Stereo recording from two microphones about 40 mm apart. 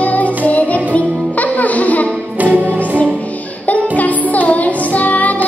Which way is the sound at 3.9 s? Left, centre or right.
Left.